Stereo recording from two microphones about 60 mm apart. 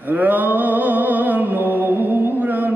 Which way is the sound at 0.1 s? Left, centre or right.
Right.